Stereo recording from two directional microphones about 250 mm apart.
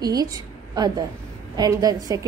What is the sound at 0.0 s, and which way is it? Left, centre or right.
A woman's voice, centre.